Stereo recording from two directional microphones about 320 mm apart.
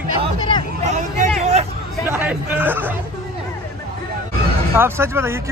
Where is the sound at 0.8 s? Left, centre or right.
Right.